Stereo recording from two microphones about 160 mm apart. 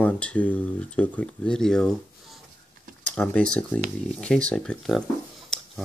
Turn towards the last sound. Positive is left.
turn(degrees=0)  # may be behind; listen again after turning